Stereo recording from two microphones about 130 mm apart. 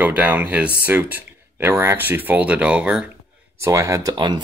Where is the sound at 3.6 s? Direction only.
25° right (ahead or behind).